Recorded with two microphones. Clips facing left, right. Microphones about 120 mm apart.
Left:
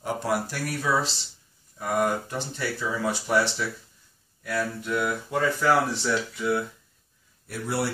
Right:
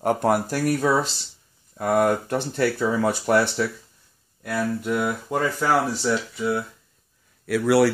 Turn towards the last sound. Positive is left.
turn(degrees=-90)